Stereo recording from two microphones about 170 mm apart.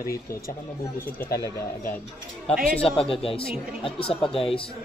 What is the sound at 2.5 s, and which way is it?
Speech, 35° left (ahead or behind).